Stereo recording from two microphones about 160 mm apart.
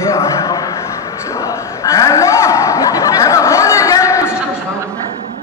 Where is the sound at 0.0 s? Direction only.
15° left (ahead or behind).